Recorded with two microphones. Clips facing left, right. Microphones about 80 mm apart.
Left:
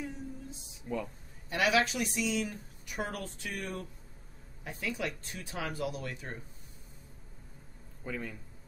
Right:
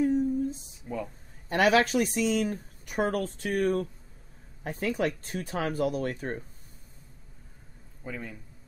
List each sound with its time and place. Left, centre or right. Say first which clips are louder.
0.0 s a sound: right 16 dB; right
0.8 s speech: right 1 dB; centre
1.5 s speech: right 6 dB; right
8.0 s speech: right 1 dB; centre